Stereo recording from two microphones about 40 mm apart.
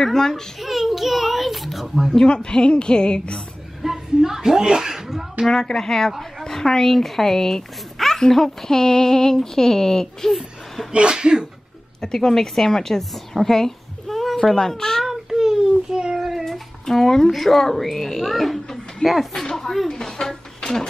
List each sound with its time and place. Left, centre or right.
0.0 s speech: centre
0.6 s a child's voice: centre
2.1 s a woman's voice: left
3.8 s a sound: centre
5.5 s speech: centre
10.9 s speech: right
12.0 s speech: centre
13.3 s a sound: centre
15.0 s child singing: centre
16.4 s speech: centre
19.0 s a woman's voice: left
19.4 s a sound: centre